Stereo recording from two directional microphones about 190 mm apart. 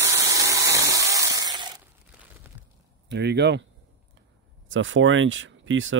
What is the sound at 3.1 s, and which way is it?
Speech, 60° right (ahead or behind).